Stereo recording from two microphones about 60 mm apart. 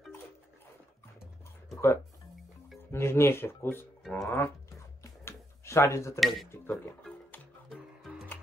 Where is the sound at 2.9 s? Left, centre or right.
Left.